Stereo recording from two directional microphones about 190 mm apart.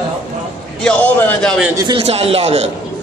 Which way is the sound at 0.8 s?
5° left (ahead or behind).